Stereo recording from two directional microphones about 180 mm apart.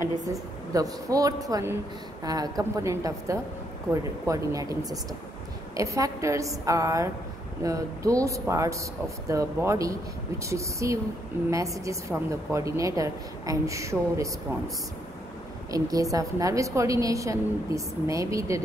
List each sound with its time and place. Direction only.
0.2 s a woman's voice: 20° right (ahead or behind)
15.7 s a woman's voice: 20° right (ahead or behind)